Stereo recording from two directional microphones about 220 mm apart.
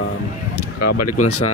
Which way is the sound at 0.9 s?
90° left.